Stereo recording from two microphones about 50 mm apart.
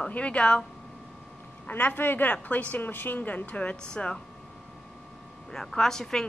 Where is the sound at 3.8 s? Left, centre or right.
Centre.